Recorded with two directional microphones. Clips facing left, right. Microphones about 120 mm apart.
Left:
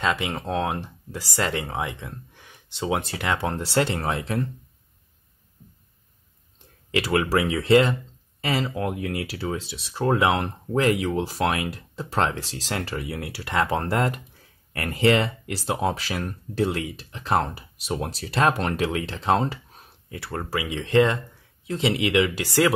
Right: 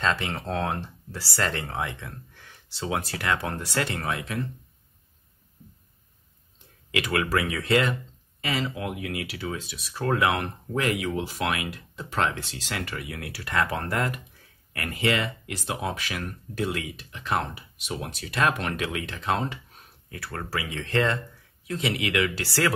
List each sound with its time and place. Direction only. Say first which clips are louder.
0.0 s speech: left 2 dB; 15° left (ahead or behind); by 4.4 s 35° left (ahead or behind)
7.0 s speech: left 4 dB; 25° left (ahead or behind)
20.1 s speech: left 4 dB; 25° left (ahead or behind)